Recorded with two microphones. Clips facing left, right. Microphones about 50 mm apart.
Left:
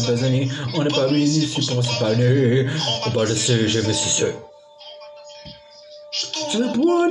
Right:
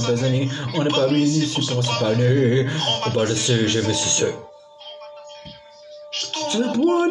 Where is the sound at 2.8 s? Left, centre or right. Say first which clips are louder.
Right 1 dB; right.